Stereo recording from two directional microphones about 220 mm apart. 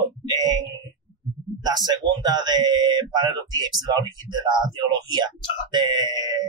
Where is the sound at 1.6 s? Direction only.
20° right (ahead or behind).